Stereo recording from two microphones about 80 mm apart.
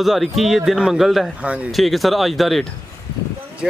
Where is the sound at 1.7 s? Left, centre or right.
Centre.